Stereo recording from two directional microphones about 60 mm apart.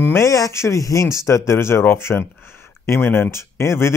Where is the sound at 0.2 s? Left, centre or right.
Left.